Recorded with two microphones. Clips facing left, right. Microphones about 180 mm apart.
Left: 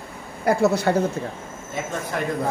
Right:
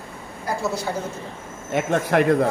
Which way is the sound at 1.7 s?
75° right (ahead or behind).